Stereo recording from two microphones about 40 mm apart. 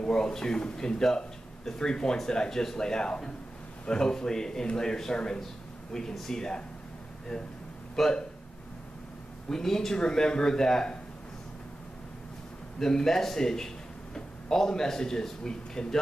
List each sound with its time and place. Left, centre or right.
0.0 s a man's voice: centre
7.9 s speech: centre
9.5 s a man's voice: centre
12.7 s a man's voice: centre